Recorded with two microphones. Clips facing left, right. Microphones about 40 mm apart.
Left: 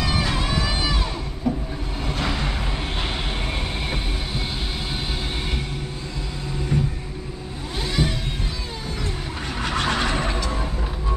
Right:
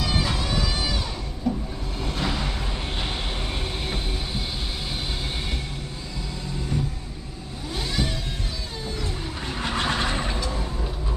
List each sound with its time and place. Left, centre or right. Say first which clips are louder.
0.0 s a sound: left 2 dB; centre
0.6 s music: left 3 dB; centre
1.5 s vehicle: left 2 dB; centre
6.7 s vehicle: left 5 dB; left
8.0 s music: left 5 dB; centre
9.8 s vehicle: left 3 dB; centre